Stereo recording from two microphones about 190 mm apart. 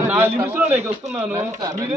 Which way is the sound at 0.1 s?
10° right (ahead or behind).